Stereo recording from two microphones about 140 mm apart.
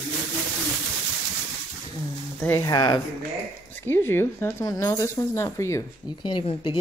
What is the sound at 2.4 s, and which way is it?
Speech, 15° left (ahead or behind).